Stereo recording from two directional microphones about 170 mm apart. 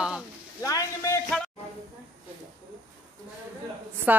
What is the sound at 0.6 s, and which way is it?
Speech, 20° left (ahead or behind).